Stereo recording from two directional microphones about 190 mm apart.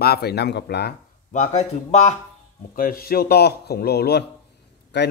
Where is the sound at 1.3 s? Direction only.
40° left (ahead or behind).